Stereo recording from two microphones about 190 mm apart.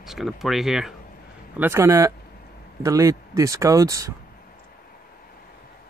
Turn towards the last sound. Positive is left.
turn(degrees=-15)  # may be behind; listen again after turning